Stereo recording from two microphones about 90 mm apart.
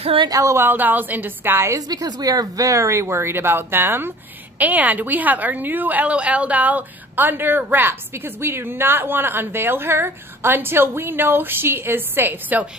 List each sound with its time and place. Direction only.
0.0 s speech: 75° right (ahead or behind)
0.3 s a woman's voice: 35° right (ahead or behind)
0.6 s a woman's voice: 20° right (ahead or behind)
1.8 s a woman's voice: 45° right (ahead or behind); by 12.6 s 20° right (ahead or behind)